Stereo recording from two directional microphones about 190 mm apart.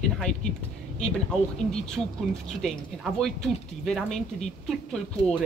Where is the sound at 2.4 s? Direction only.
Centre (ahead or behind).